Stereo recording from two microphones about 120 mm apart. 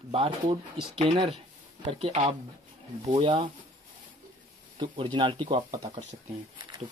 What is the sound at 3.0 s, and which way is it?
Speech, 50° right (ahead or behind).